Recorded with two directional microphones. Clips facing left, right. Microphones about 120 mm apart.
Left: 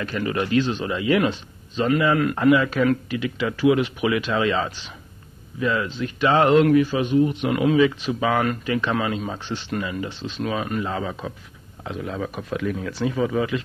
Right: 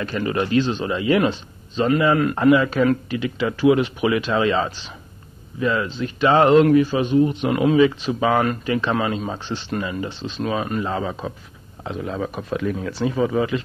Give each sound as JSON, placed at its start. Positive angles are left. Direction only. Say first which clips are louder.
{"t": 0.0, "sound": "a man's voice", "louder": "right 2 dB", "side_deg": -30}